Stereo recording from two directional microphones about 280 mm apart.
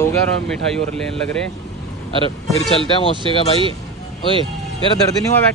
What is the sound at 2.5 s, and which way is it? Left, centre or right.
Speech, centre.